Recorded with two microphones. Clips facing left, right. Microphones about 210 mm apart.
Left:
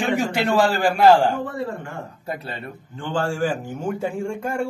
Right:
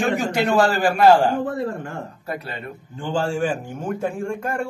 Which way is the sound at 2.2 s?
25° left (ahead or behind).